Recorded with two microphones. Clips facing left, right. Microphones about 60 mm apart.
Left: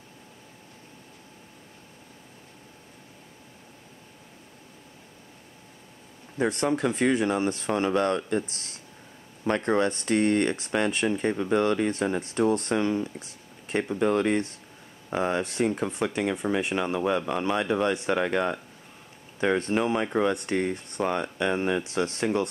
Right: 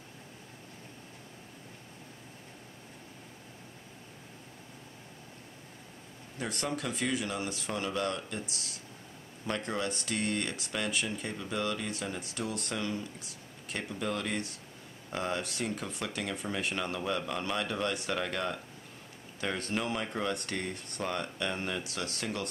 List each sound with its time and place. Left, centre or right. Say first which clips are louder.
6.3 s speech: left 10 dB; left